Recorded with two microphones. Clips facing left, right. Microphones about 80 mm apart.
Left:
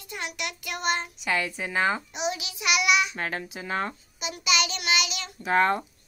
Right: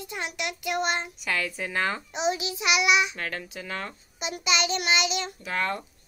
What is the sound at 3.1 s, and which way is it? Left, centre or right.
Speech, left.